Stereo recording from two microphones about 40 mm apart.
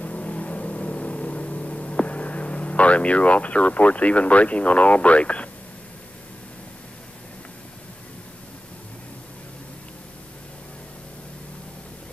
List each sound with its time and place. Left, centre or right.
0.0 s vehicle: left